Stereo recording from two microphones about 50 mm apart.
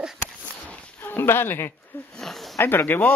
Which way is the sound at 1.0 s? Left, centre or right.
Left.